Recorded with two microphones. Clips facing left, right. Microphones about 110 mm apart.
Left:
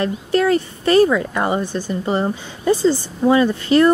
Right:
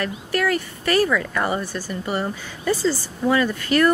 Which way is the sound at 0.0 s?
25° left (ahead or behind).